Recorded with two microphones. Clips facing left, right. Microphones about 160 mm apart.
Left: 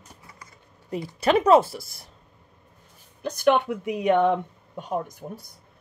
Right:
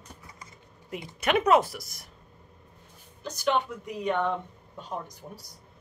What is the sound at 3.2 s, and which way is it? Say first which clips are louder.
Speech: left 6 dB; 60° left (ahead or behind).